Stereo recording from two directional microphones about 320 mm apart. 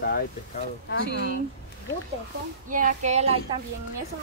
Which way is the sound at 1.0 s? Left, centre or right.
Right.